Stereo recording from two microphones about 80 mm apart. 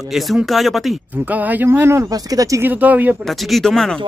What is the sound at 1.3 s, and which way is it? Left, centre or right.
Speech, right.